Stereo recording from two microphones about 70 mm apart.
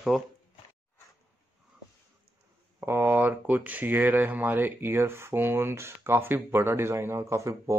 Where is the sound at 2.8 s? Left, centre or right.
Right.